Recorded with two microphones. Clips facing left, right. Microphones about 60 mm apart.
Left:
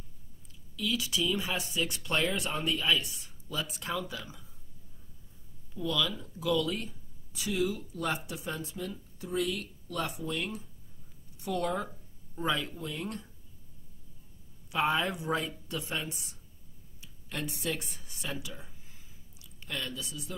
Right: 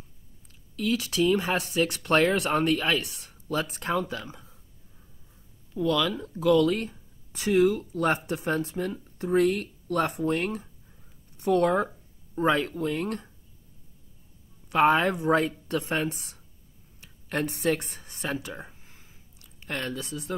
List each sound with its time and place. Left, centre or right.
0.7 s speech: right
5.8 s speech: right
14.7 s speech: right
17.0 s a sound: right
19.7 s speech: right